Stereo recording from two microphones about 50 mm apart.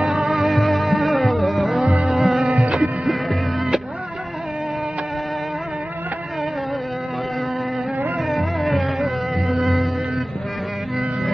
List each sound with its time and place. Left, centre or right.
0.0 s music: centre
8.3 s music: centre